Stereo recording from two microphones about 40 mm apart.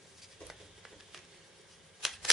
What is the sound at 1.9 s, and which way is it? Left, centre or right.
Scissors, centre.